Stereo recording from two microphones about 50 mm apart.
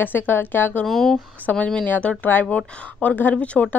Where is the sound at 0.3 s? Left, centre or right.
Left.